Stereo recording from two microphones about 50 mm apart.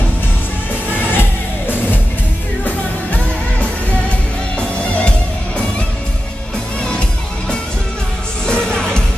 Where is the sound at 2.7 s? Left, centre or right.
Left.